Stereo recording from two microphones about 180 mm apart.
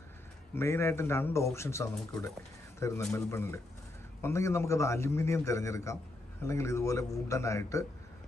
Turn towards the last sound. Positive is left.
turn(degrees=15)  # may be behind; listen again after turning